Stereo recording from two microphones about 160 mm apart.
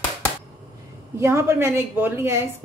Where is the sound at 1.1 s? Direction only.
15° right (ahead or behind).